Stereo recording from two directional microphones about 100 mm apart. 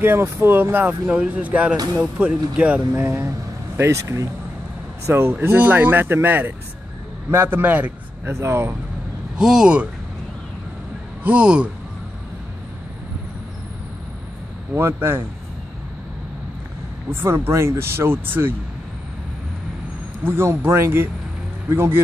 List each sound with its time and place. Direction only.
0.0 s speech: 25° right (ahead or behind)
8.3 s speech: 25° right (ahead or behind)
9.4 s speech: 5° right (ahead or behind)
11.2 s speech: 10° right (ahead or behind)
14.8 s speech: 25° right (ahead or behind)
17.1 s speech: 25° right (ahead or behind)
20.2 s speech: 25° right (ahead or behind)